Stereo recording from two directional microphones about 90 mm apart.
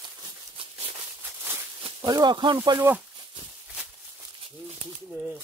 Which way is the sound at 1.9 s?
45° right (ahead or behind).